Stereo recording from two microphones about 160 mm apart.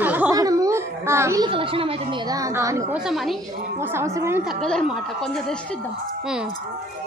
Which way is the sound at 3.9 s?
20° right (ahead or behind).